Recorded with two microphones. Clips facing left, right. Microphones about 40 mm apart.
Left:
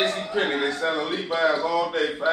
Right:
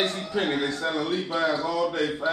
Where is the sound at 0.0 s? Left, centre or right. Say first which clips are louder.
Left 2 dB; left.